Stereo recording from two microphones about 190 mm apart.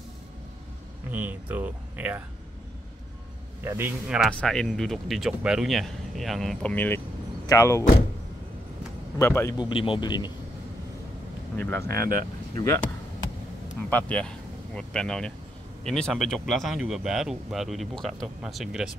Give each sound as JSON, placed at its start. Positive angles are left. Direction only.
{"t": 1.1, "sound": "speech", "side_deg": -10}
{"t": 3.6, "sound": "speech", "side_deg": -10}
{"t": 4.3, "sound": "a man's voice", "side_deg": 5}
{"t": 9.2, "sound": "a man's voice", "side_deg": 10}
{"t": 9.6, "sound": "speech", "side_deg": 25}
{"t": 11.5, "sound": "a man's voice", "side_deg": 10}
{"t": 11.9, "sound": "speech", "side_deg": -50}
{"t": 12.5, "sound": "a man's voice", "side_deg": 15}